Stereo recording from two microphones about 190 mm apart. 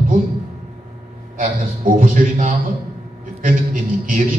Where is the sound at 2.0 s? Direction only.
45° right (ahead or behind).